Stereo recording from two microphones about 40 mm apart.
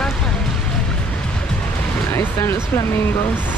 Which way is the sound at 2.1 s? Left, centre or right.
Left.